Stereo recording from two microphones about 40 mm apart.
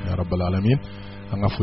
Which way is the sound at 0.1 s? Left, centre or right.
Centre.